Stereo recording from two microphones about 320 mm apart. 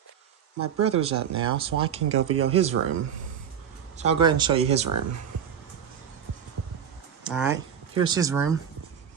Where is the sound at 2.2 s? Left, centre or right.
Right.